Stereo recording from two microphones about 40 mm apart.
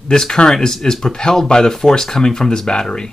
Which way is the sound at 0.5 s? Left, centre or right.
Centre.